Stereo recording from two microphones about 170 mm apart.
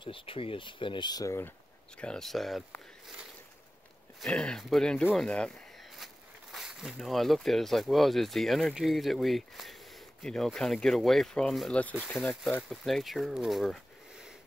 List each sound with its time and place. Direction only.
0.0 s speech: 30° left (ahead or behind)
2.0 s speech: 5° left (ahead or behind)
6.5 s speech: 5° right (ahead or behind)